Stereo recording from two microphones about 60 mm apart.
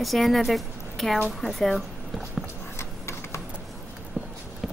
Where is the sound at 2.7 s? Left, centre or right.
Left.